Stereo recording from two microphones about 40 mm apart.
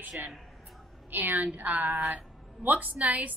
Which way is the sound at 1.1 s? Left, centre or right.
Right.